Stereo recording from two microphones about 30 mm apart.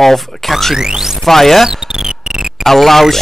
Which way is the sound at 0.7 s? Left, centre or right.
Centre.